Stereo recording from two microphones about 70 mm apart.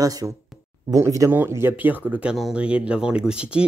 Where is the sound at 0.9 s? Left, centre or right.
Right.